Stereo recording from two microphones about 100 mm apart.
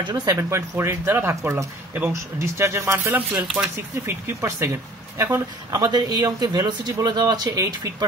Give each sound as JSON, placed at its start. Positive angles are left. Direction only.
{"t": 0.0, "sound": "speech", "side_deg": -45}
{"t": 0.4, "sound": "speech", "side_deg": -30}
{"t": 4.0, "sound": "speech", "side_deg": -30}